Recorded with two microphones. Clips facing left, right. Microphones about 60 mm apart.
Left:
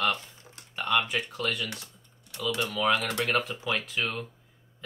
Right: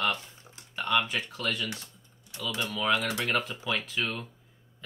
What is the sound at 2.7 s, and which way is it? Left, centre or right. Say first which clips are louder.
Speech: even; centre.